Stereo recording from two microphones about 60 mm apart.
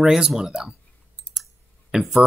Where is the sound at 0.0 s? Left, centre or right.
Centre.